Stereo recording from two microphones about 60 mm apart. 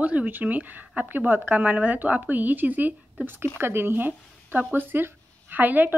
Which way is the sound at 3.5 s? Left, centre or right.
Right.